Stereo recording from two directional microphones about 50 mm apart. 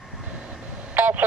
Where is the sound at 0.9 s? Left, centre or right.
Right.